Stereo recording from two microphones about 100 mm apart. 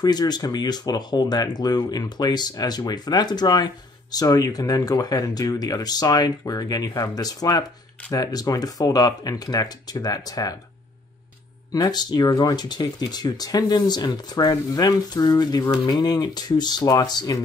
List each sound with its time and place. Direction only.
0.0 s speech: 45° left (ahead or behind)
11.9 s speech: 45° left (ahead or behind)